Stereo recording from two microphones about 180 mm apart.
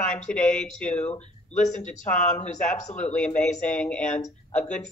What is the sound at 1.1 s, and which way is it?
Speech, 40° left (ahead or behind).